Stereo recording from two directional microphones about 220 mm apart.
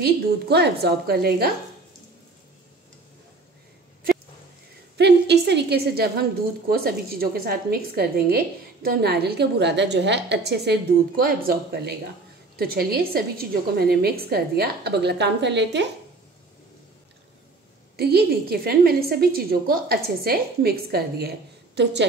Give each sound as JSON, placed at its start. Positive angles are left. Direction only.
{"t": 0.0, "sound": "a woman's voice", "side_deg": -45}
{"t": 4.9, "sound": "a woman's voice", "side_deg": -50}
{"t": 17.9, "sound": "a woman's voice", "side_deg": -45}